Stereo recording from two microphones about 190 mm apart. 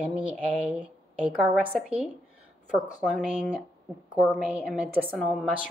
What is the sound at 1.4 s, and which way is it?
Speech, 5° right (ahead or behind).